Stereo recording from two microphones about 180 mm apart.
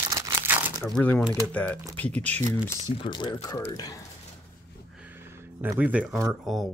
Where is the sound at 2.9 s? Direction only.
25° left (ahead or behind).